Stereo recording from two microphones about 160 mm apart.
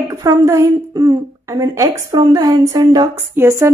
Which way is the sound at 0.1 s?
20° right (ahead or behind).